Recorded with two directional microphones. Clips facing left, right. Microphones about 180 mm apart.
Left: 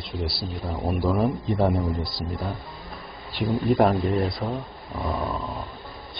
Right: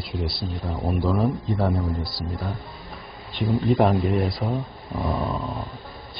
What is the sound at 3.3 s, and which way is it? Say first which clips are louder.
Speech: even; centre (ahead or behind).